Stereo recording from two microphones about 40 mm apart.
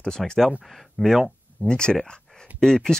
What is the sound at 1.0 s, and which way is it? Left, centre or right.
Speech, centre.